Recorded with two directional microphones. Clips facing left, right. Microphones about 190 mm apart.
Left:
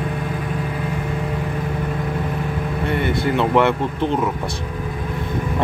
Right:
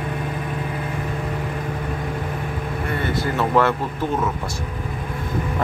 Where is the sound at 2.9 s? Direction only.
20° left (ahead or behind).